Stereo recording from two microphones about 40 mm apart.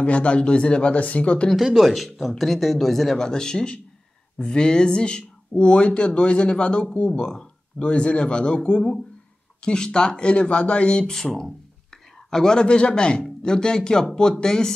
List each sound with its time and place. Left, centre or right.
0.0 s speech: left
1.6 s speech: centre
3.3 s speech: centre
11.1 s speech: centre